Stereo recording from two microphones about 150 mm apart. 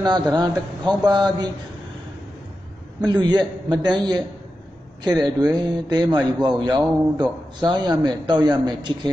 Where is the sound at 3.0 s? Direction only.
30° right (ahead or behind).